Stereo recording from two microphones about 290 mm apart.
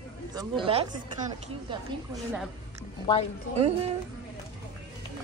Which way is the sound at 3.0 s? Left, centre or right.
Centre.